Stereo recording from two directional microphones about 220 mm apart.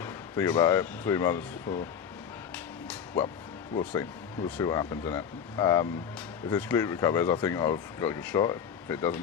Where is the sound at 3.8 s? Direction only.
5° left (ahead or behind).